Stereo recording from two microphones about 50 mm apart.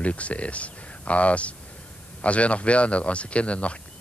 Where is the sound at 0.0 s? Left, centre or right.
Left.